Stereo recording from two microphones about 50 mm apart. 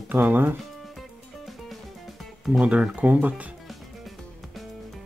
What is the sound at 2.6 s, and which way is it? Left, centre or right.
Speech, right.